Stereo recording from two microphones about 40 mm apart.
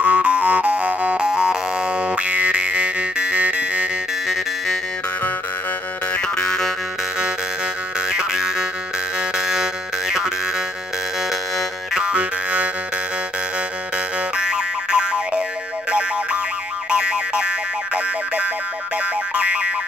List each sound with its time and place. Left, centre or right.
0.0 s music: right
1.2 s music: right
6.1 s music: left
8.1 s music: centre
9.4 s a sound: centre
11.9 s music: right
14.3 s boing: right
16.9 s music: right
19.3 s boing: right